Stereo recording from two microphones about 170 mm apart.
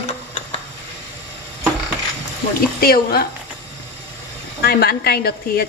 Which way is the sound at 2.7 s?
60° left (ahead or behind).